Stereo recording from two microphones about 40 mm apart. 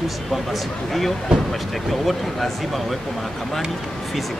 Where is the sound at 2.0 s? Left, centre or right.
Centre.